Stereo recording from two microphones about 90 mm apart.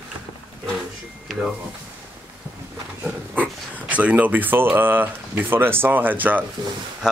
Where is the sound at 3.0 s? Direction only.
15° right (ahead or behind).